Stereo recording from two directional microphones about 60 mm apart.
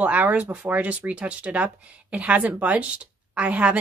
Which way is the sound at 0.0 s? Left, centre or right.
Right.